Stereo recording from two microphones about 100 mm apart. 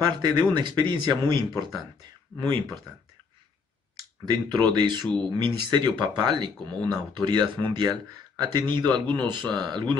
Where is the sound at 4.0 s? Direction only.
45° right (ahead or behind).